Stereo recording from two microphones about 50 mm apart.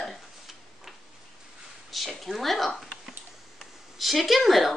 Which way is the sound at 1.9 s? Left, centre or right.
Centre.